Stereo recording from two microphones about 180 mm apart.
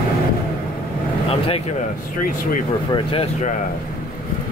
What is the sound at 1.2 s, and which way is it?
Speech, 30° left (ahead or behind).